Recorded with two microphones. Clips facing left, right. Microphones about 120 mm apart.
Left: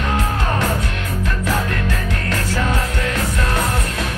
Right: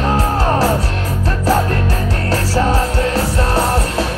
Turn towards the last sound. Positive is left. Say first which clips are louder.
# right 5 dB
turn(degrees=-35)  # may be behind; listen again after turning